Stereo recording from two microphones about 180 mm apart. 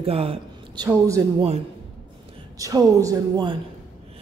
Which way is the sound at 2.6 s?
20° right (ahead or behind).